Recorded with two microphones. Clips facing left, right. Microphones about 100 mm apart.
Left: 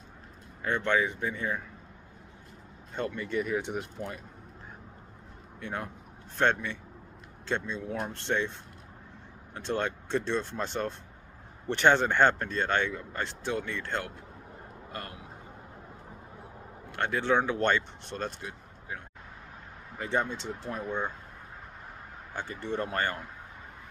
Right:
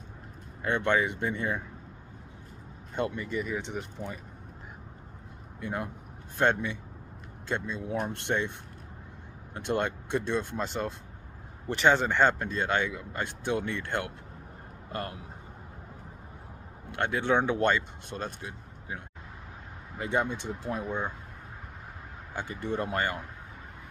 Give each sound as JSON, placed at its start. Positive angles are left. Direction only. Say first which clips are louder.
{"t": 0.7, "sound": "speech", "louder": "right 1 dB", "side_deg": -20}
{"t": 3.3, "sound": "speech", "louder": "left 2 dB", "side_deg": 0}
{"t": 3.5, "sound": "speech", "louder": "left 3 dB", "side_deg": 10}
{"t": 6.4, "sound": "speech", "louder": "right 1 dB", "side_deg": -15}
{"t": 7.9, "sound": "speech", "louder": "right 1 dB", "side_deg": -20}
{"t": 9.6, "sound": "a man's voice", "louder": "right 2 dB", "side_deg": -15}
{"t": 16.9, "sound": "speech", "louder": "even", "side_deg": -20}
{"t": 22.3, "sound": "speech", "louder": "right 1 dB", "side_deg": -15}